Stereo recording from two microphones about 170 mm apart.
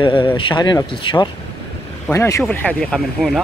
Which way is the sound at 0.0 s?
30° left (ahead or behind).